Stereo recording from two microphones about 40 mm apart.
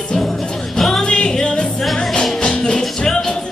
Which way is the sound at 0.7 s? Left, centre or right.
Centre.